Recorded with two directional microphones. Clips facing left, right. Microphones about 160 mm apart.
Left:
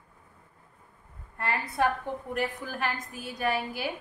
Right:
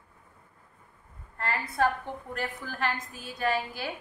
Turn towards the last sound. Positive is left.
turn(degrees=15)  # may be behind; listen again after turning